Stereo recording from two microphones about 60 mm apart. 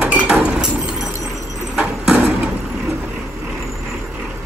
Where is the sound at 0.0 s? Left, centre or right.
Right.